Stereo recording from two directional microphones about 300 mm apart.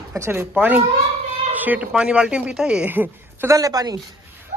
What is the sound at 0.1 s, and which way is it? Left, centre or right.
Speech, centre.